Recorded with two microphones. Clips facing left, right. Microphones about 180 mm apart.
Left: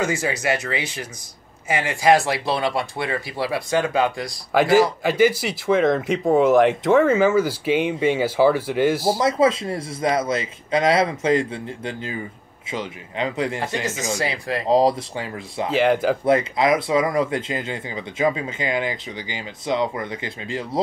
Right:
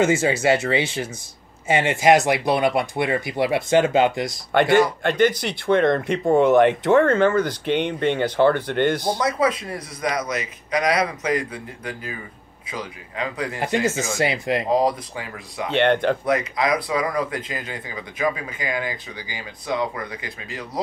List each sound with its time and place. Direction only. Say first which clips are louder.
0.0 s speech: right 5 dB; 25° right (ahead or behind)
4.6 s speech: left 1 dB; centre (ahead or behind)
9.2 s speech: left 4 dB; 25° left (ahead or behind)
14.1 s speech: right 3 dB; 25° right (ahead or behind)
14.6 s speech: left 5 dB; 30° left (ahead or behind)
15.7 s speech: even; 5° left (ahead or behind)
16.3 s speech: left 7 dB; 25° left (ahead or behind)